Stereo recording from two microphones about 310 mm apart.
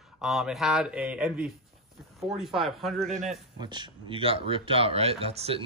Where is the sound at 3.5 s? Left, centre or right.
Centre.